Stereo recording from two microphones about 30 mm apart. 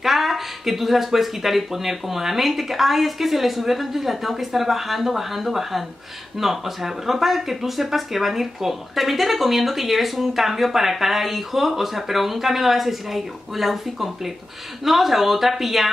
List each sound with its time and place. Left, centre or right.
0.0 s speech: centre